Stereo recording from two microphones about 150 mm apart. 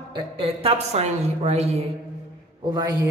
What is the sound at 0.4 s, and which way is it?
A woman's voice, 40° right (ahead or behind).